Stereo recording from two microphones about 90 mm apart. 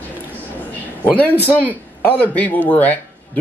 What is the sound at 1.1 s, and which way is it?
Speech, 15° left (ahead or behind).